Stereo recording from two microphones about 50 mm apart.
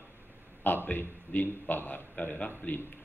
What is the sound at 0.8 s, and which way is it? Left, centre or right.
A man's voice, left.